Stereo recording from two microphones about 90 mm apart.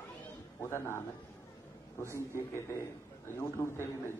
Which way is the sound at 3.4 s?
30° left (ahead or behind).